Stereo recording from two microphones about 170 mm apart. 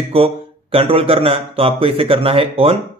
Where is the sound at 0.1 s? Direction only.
35° right (ahead or behind).